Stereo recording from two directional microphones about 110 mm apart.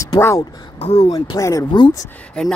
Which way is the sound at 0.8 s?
65° left (ahead or behind).